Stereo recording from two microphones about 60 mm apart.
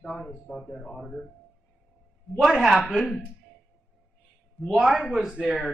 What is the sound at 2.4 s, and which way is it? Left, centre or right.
Speech, centre.